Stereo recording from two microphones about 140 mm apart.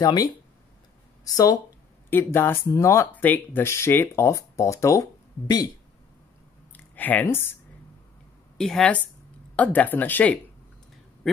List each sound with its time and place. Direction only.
0.0 s speech: 25° left (ahead or behind)
6.8 s speech: 10° left (ahead or behind)
8.5 s a woman's voice: 5° left (ahead or behind)